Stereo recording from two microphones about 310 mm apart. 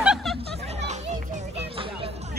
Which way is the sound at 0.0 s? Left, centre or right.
Centre.